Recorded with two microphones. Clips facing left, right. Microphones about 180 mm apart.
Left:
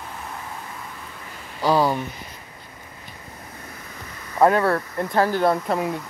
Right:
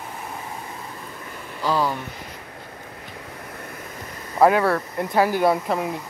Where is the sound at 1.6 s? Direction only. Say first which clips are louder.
Left 3 dB; 15° left (ahead or behind).